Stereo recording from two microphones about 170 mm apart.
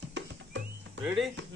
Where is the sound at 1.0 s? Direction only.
Centre (ahead or behind).